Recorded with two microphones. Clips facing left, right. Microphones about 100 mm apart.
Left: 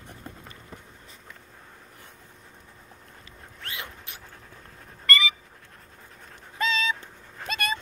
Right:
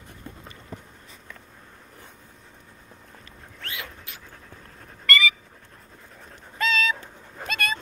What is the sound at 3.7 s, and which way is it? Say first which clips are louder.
Dog: right 1 dB; 25° left (ahead or behind).